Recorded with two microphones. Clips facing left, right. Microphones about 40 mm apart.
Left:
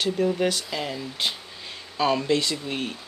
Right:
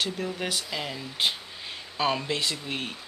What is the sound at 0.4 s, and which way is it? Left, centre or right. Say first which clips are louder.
Speech: left 5 dB; centre.